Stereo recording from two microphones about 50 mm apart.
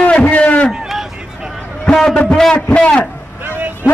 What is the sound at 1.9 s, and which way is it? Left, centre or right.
A man's voice, centre.